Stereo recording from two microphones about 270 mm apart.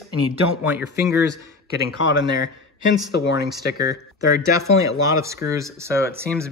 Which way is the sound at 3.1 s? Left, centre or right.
Left.